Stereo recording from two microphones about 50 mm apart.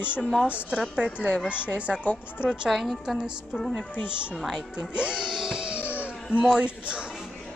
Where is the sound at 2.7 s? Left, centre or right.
Centre.